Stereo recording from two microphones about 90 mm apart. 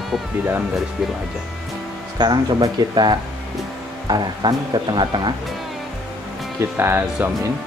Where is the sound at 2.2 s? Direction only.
50° right (ahead or behind).